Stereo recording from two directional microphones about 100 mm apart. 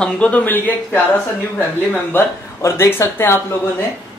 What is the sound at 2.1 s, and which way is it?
Speech, 25° left (ahead or behind).